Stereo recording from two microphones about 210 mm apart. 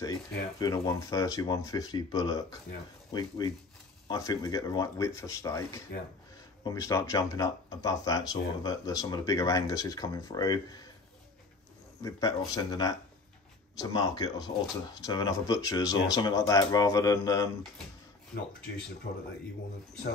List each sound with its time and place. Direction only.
0.0 s speech: 15° left (ahead or behind)
12.0 s speech: 15° left (ahead or behind)
19.1 s speech: 40° left (ahead or behind)